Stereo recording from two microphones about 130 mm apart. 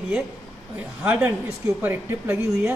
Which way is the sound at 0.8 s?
10° right (ahead or behind).